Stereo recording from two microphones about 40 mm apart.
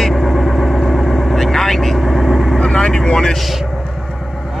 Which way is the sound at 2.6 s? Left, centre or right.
Centre.